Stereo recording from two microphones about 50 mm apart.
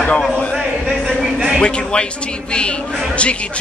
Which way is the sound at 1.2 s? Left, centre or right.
Centre.